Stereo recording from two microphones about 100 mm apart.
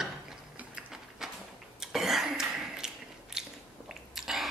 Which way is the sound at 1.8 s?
5° right (ahead or behind).